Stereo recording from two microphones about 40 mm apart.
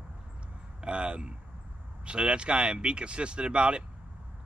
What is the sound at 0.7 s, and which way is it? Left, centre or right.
Speech, right.